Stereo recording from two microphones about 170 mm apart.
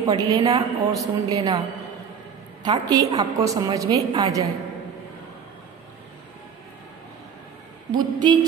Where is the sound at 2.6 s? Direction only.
25° right (ahead or behind).